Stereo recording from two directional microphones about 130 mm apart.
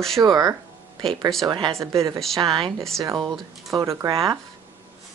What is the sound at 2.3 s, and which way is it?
Speech, 40° right (ahead or behind).